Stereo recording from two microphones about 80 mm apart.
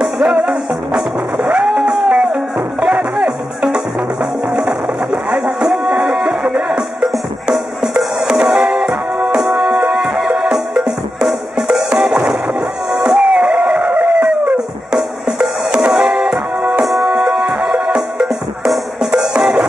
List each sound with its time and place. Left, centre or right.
0.0 s music: centre
1.5 s music: centre
1.9 s music: centre
5.3 s music: centre
12.9 s a sound: centre
14.9 s music: centre
17.6 s music: centre
18.2 s music: centre